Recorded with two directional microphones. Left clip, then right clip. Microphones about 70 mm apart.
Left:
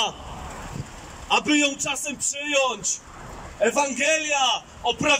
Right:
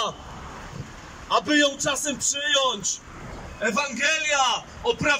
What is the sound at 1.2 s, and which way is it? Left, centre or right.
A man's voice, left.